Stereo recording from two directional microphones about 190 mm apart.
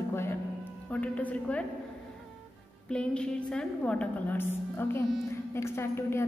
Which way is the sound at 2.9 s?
5° left (ahead or behind).